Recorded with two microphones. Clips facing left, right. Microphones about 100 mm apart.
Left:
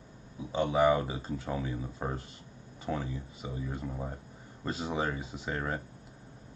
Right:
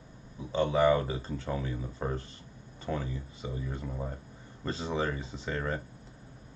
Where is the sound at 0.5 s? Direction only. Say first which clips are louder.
Right 1 dB; 15° left (ahead or behind).